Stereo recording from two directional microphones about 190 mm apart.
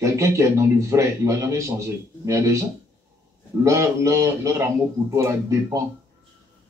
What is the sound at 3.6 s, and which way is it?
A man's voice, 15° right (ahead or behind).